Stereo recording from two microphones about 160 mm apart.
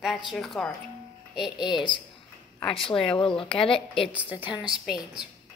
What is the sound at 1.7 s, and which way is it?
Speech, 30° left (ahead or behind).